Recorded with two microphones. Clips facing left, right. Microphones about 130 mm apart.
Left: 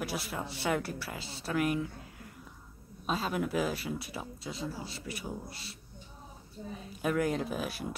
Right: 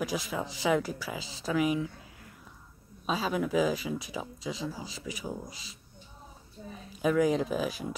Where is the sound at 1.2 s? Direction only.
90° right.